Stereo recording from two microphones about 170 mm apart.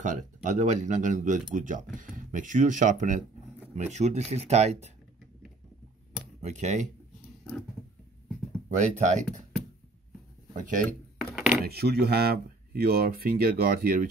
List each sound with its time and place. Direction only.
0.0 s speech: 45° right (ahead or behind)
6.4 s speech: 45° right (ahead or behind)
8.6 s speech: 45° right (ahead or behind)
10.5 s speech: 50° right (ahead or behind)
11.3 s a sound: 10° right (ahead or behind)
11.6 s speech: 70° right (ahead or behind)